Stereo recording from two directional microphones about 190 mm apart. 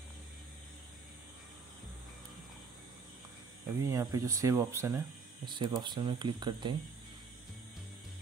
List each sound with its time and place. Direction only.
3.8 s speech: 20° right (ahead or behind)